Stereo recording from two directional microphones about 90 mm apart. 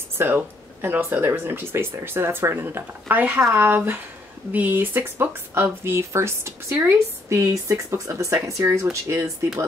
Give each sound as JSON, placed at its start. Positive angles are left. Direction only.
{"t": 0.2, "sound": "speech", "side_deg": -25}